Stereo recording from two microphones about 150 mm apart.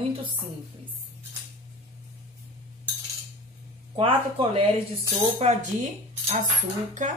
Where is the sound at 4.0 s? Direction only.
35° right (ahead or behind).